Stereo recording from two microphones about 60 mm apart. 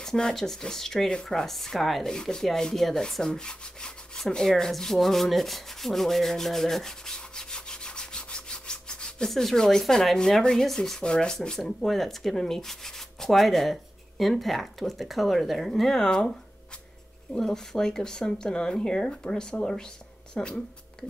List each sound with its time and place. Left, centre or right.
0.0 s speech: centre
2.0 s rub: centre
11.0 s speech: centre